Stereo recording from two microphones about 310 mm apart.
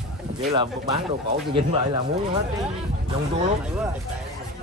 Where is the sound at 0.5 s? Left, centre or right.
Centre.